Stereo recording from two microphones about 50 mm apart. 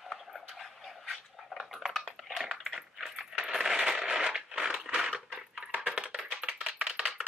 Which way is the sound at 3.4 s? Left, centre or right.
Centre.